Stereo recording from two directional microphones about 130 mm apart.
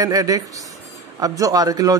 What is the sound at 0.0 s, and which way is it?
Speech, 25° right (ahead or behind).